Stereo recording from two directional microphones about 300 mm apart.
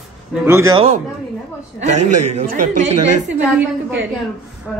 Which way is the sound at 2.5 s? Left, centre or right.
Right.